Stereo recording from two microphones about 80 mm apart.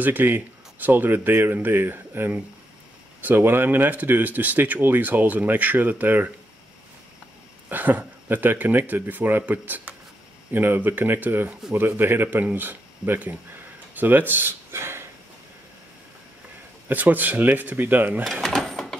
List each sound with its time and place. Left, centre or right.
0.0 s speech: right
7.7 s speech: right
16.9 s speech: right
18.2 s cash register: centre